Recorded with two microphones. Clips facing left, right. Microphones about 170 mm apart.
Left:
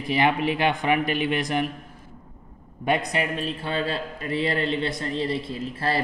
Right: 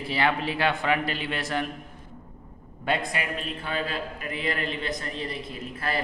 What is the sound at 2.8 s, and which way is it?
A man's voice, 20° left (ahead or behind).